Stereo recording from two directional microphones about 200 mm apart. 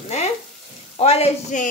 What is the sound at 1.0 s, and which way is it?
Frying, 30° left (ahead or behind).